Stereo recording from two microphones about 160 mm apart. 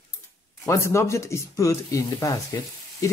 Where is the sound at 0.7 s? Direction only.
15° left (ahead or behind).